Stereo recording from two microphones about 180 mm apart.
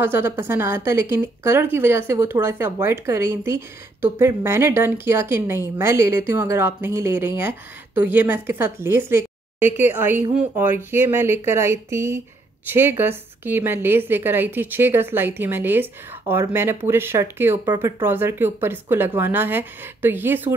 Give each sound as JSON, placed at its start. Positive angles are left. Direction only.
{"t": 0.0, "sound": "speech", "side_deg": -15}